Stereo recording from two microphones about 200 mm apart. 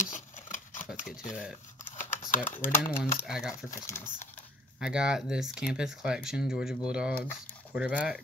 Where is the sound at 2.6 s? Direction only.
10° left (ahead or behind).